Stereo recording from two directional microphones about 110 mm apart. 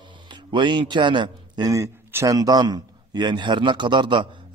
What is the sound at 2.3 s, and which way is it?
A man's voice, 35° right (ahead or behind).